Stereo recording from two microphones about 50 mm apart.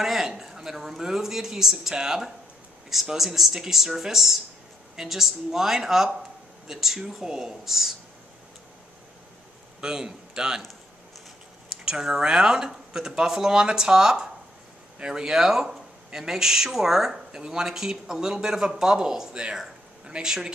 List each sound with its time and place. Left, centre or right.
0.0 s speech: centre
9.8 s a man's voice: centre
11.7 s speech: centre